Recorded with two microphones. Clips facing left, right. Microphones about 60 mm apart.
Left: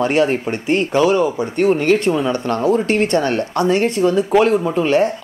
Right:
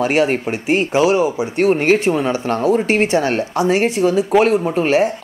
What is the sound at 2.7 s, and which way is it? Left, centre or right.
Speech, centre.